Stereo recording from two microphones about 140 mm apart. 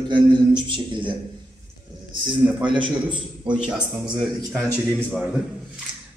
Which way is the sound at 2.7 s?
35° right (ahead or behind).